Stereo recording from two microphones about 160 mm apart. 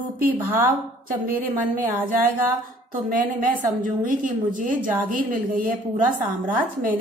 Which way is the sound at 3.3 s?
60° right (ahead or behind).